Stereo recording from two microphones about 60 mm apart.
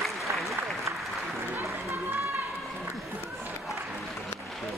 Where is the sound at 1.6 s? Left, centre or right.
Right.